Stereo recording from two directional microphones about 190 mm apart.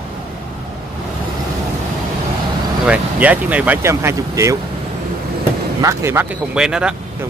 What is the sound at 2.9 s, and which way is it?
Speech, 10° right (ahead or behind).